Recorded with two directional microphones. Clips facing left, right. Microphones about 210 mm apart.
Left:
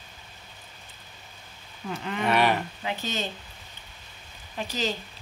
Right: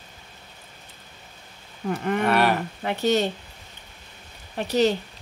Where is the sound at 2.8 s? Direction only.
65° right (ahead or behind).